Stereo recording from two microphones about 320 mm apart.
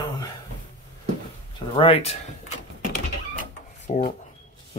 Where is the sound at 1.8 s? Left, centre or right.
Centre.